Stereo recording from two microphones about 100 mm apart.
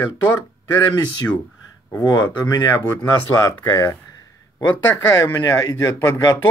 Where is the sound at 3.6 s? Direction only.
25° left (ahead or behind).